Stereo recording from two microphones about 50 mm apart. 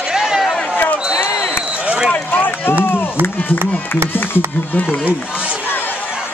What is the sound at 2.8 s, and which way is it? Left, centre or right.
Run, left.